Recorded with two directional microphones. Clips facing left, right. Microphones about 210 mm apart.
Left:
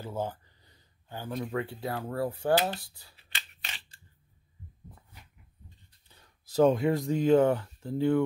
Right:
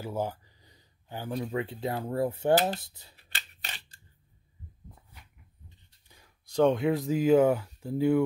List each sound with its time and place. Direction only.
0.0 s speech: 10° right (ahead or behind)
3.2 s scissors: 40° right (ahead or behind)
6.0 s a sound: 10° right (ahead or behind)
6.4 s speech: 5° left (ahead or behind)